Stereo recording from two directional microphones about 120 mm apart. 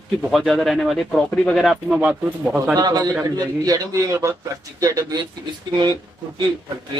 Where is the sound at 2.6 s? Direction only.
30° right (ahead or behind).